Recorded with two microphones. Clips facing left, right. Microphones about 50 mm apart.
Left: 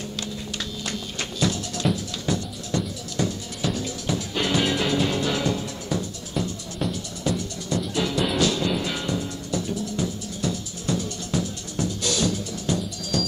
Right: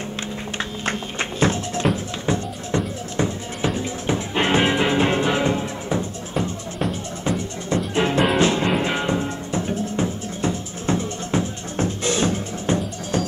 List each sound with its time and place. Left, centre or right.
1.4 s music: right